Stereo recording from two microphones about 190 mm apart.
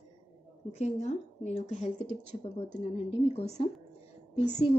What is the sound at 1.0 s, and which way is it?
Speech, 35° left (ahead or behind).